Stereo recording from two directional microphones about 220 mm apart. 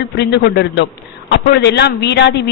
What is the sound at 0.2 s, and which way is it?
A woman's voice, 50° left (ahead or behind).